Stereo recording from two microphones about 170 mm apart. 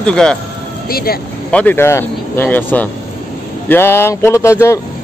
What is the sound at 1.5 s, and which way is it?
Speech, 10° left (ahead or behind).